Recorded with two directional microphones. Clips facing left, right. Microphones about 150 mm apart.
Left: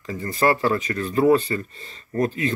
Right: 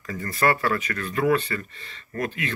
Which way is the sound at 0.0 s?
20° left (ahead or behind).